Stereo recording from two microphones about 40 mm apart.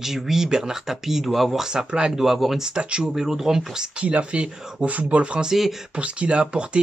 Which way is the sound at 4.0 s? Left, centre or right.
Right.